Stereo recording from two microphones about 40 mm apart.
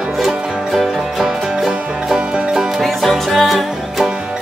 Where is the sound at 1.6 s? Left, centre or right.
Centre.